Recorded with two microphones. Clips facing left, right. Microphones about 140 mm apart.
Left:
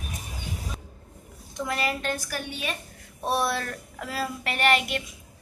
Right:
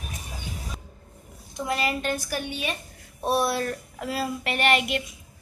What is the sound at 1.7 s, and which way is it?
Speech, 20° right (ahead or behind).